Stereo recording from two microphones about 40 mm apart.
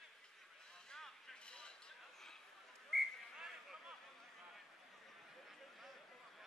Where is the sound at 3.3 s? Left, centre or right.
Centre.